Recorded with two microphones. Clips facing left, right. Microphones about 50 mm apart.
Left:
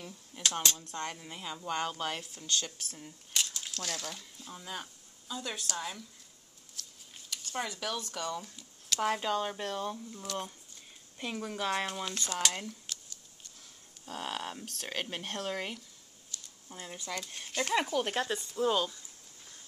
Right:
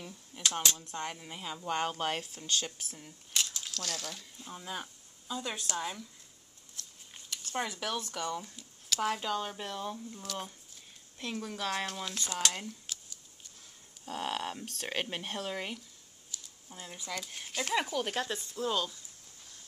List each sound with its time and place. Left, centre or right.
0.0 s speech: centre
1.8 s speech: right
3.0 s speech: centre
4.4 s speech: centre
7.2 s speech: centre
14.0 s speech: centre
14.6 s speech: centre